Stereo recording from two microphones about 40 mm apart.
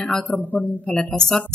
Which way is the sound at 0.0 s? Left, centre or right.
Left.